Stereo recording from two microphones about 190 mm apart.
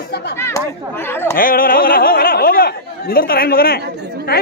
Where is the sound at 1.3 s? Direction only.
50° left (ahead or behind).